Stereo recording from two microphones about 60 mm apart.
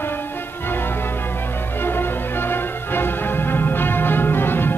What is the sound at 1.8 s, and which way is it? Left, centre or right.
Music, left.